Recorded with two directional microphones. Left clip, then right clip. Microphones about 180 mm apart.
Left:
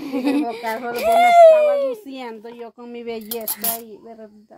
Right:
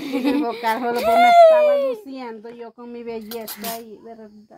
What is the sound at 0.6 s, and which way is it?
Speech, 65° right (ahead or behind).